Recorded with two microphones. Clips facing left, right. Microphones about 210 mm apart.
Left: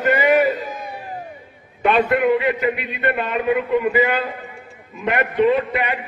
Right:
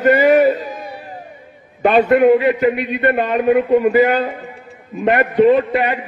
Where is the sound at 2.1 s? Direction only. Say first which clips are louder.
Right 6 dB; 40° right (ahead or behind).